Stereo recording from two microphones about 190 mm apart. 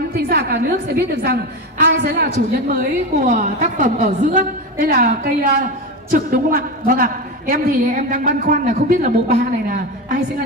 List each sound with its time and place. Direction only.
0.3 s a woman's voice: 55° right (ahead or behind)
3.2 s a woman's voice: 45° right (ahead or behind)